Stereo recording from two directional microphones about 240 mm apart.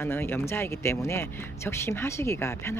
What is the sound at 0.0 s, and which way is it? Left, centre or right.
Speech, centre.